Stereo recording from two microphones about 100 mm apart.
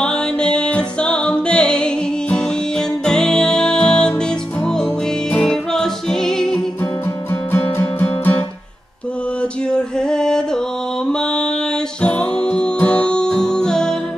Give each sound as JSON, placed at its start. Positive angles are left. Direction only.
{"t": 0.0, "sound": "music", "side_deg": 10}
{"t": 7.5, "sound": "music", "side_deg": 20}
{"t": 11.1, "sound": "mantra", "side_deg": 10}
{"t": 12.0, "sound": "music", "side_deg": 10}